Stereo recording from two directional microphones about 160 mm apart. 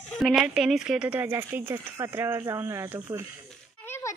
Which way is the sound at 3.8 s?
15° left (ahead or behind).